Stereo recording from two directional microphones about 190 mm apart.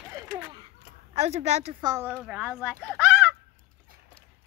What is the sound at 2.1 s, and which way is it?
Speech, 5° right (ahead or behind).